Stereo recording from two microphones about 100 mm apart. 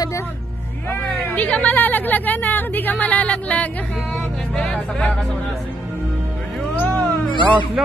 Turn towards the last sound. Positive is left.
turn(degrees=-5)  # may be behind; listen again after turning